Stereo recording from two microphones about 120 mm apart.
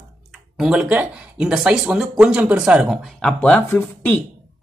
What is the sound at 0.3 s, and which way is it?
Speech, 5° right (ahead or behind).